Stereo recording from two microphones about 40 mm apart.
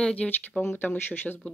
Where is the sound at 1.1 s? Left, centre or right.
Left.